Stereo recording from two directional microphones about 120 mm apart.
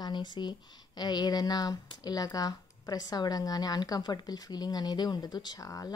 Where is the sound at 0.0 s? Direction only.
40° left (ahead or behind).